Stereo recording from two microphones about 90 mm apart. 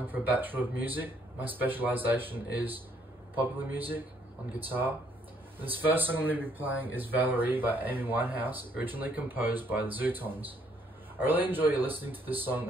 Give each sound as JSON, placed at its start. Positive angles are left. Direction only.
{"t": 0.0, "sound": "speech", "side_deg": -20}